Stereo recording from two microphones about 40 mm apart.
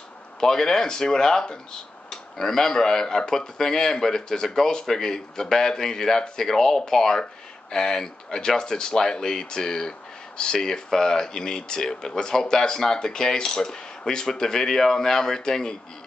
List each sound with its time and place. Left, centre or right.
0.4 s speech: centre